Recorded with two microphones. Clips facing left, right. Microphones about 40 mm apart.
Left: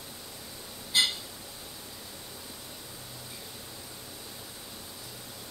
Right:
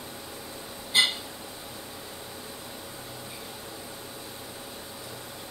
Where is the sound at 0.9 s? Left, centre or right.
Right.